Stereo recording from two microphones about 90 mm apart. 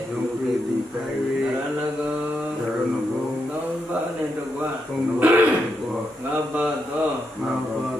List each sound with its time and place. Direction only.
5.2 s throat clearing: 20° right (ahead or behind)